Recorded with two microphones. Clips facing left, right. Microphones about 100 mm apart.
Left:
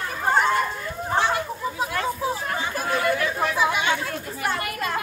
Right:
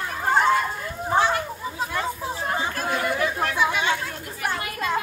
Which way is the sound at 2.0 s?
25° right (ahead or behind).